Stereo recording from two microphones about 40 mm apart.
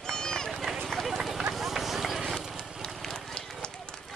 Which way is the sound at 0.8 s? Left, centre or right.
Centre.